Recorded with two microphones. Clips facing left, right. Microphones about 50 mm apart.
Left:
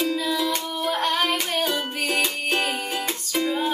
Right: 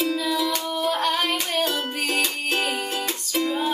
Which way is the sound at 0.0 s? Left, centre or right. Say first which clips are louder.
Even; centre.